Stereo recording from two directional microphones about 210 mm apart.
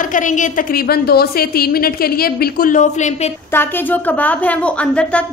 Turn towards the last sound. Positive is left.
turn(degrees=5)  # may be behind; listen again after turning